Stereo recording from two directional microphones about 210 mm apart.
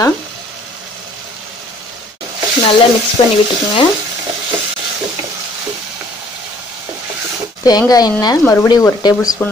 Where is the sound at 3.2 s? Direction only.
30° left (ahead or behind).